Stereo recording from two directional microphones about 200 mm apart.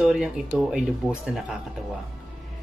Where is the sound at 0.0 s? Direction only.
5° right (ahead or behind).